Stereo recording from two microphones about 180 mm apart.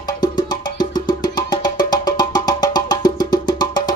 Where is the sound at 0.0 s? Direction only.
25° left (ahead or behind).